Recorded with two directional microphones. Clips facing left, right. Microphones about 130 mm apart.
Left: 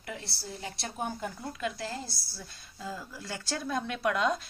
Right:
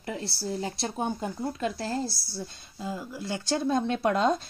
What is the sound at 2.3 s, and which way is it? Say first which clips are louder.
Speech: right 9 dB; 25° right (ahead or behind).